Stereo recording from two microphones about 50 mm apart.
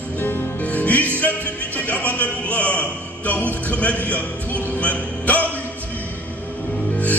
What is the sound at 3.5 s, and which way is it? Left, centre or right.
A man's voice, left.